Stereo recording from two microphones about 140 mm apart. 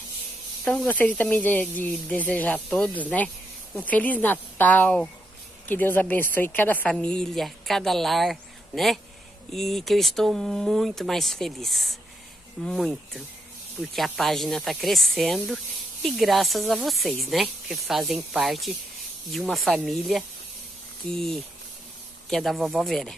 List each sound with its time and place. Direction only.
0.7 s speech: 10° left (ahead or behind)